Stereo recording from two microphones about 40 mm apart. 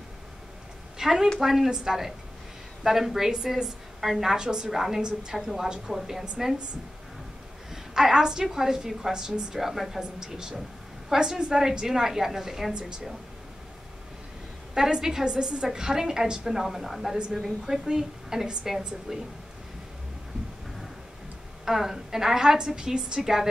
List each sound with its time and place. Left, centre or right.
0.9 s a woman's voice: centre
4.7 s a woman's voice: centre
7.7 s a woman's voice: centre
9.6 s a woman's voice: centre
14.7 s a woman's voice: centre
21.6 s a woman's voice: centre